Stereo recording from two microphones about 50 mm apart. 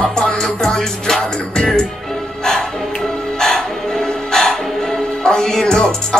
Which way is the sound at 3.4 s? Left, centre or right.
Centre.